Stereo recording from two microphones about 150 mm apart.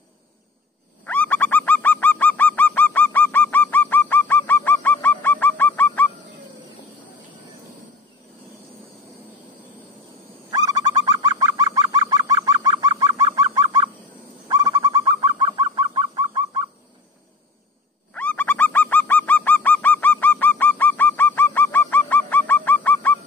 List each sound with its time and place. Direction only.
1.0 s bird: 10° left (ahead or behind)
10.5 s bird: 25° right (ahead or behind)
18.1 s bird: 10° left (ahead or behind)